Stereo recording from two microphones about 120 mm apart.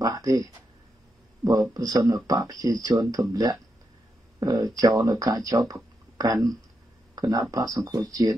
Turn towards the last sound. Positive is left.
turn(degrees=-25)  # may be behind; listen again after turning